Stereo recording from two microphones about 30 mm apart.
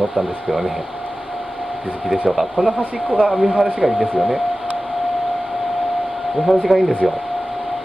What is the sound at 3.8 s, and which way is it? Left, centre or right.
Speech, centre.